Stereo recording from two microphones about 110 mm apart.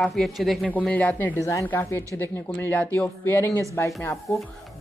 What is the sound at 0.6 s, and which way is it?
Speech, 15° left (ahead or behind).